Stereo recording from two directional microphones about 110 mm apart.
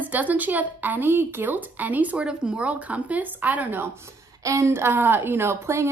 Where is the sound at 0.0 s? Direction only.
15° right (ahead or behind).